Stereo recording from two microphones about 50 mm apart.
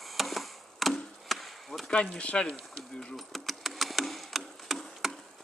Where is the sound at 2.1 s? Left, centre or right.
Left.